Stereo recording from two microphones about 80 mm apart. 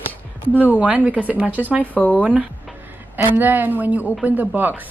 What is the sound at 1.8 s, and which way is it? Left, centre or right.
Speech, centre.